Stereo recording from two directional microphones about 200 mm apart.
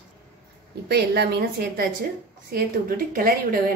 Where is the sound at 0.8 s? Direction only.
55° right (ahead or behind).